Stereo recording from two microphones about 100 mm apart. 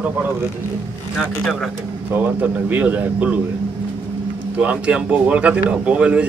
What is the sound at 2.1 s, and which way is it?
Speech, 15° right (ahead or behind).